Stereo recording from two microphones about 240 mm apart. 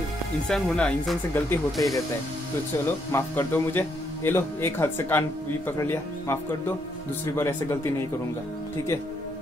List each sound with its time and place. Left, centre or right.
0.5 s speech: centre
3.1 s a man's voice: centre
7.3 s a man's voice: centre